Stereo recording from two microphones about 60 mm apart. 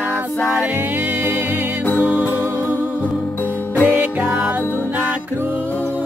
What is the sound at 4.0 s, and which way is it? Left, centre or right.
Music, right.